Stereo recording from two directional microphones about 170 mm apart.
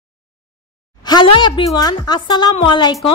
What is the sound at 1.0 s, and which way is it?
A woman's voice, 25° left (ahead or behind).